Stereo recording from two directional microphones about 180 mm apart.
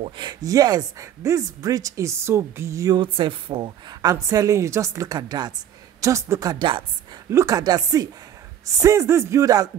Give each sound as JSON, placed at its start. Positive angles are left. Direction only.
{"t": 0.0, "sound": "speech", "side_deg": -25}